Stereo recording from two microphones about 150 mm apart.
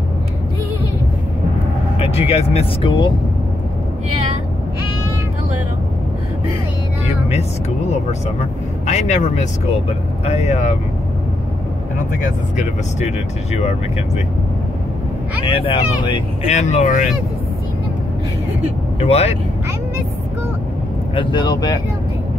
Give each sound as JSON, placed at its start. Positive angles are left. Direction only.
{"t": 2.0, "sound": "speech", "side_deg": 40}
{"t": 8.8, "sound": "speech", "side_deg": 50}
{"t": 12.1, "sound": "speech", "side_deg": 60}
{"t": 15.4, "sound": "speech", "side_deg": 35}
{"t": 18.9, "sound": "speech", "side_deg": 40}
{"t": 21.1, "sound": "speech", "side_deg": 35}